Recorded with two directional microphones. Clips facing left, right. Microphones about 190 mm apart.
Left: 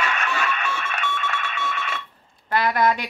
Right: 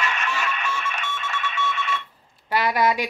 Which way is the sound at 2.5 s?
10° right (ahead or behind).